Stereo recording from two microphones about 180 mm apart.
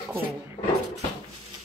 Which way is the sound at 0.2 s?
55° right (ahead or behind).